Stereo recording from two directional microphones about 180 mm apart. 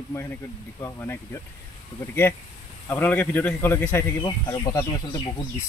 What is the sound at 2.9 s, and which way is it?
Speech, 10° left (ahead or behind).